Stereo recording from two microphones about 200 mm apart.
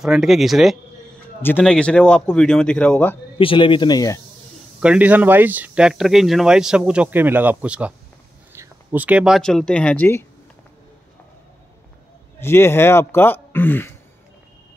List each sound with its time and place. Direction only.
0.0 s speech: centre (ahead or behind)
3.3 s speech: 25° left (ahead or behind)
4.7 s speech: 5° right (ahead or behind); by 10.2 s 10° left (ahead or behind)
12.4 s speech: 10° left (ahead or behind)